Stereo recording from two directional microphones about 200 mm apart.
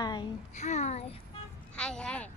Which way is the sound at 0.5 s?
35° left (ahead or behind).